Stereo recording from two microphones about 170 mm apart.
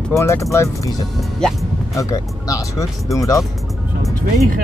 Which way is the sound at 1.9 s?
20° left (ahead or behind).